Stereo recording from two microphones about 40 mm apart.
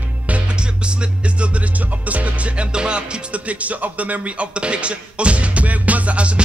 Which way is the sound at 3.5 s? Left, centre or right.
Right.